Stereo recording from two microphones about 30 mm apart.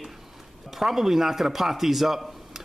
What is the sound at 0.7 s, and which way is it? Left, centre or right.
A man's voice, centre.